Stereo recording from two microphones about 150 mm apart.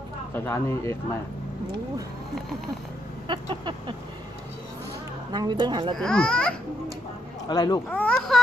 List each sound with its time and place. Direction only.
0.3 s speech: 15° left (ahead or behind)
3.3 s a sound: 30° right (ahead or behind)
5.3 s speech: 30° right (ahead or behind)
5.9 s speech: 5° left (ahead or behind)
7.4 s speech: 25° left (ahead or behind)
7.9 s speech: 5° left (ahead or behind)